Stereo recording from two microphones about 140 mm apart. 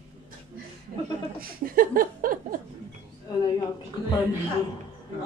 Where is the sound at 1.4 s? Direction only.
90° right.